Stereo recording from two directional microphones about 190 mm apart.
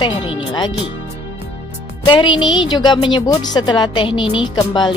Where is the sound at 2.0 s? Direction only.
25° left (ahead or behind).